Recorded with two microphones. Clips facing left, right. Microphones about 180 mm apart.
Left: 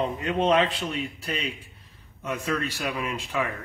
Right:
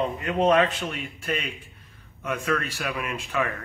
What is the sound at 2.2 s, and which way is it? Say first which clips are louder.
Speech: right 1 dB; 30° left (ahead or behind).